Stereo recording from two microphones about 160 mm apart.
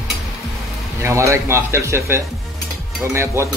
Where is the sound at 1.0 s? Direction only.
15° right (ahead or behind).